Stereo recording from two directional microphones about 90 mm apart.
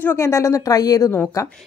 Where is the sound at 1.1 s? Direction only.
30° left (ahead or behind).